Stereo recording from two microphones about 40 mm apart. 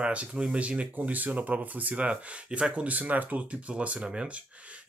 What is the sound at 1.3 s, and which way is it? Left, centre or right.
Speech, right.